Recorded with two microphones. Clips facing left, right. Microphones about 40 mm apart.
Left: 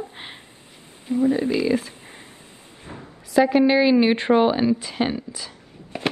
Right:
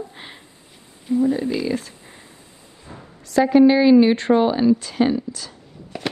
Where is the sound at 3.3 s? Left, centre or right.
Centre.